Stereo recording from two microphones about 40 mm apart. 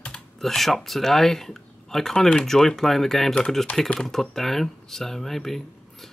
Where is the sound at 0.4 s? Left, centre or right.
Centre.